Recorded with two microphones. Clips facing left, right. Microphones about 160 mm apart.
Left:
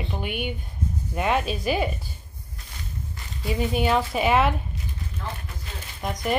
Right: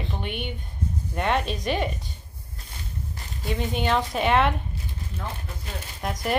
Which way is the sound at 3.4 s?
5° left (ahead or behind).